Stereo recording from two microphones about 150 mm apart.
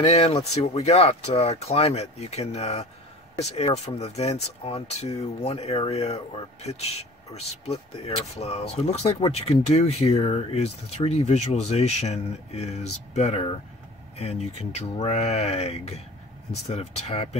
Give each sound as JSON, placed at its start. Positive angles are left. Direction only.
{"t": 0.0, "sound": "speech", "side_deg": 45}